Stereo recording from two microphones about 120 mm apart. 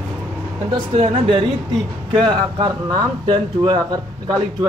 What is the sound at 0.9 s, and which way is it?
Speech, 65° right (ahead or behind).